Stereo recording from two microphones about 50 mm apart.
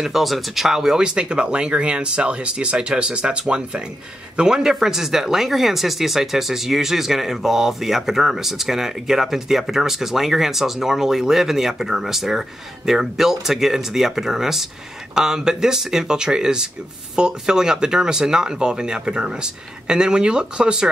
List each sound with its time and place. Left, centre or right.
0.0 s speech: centre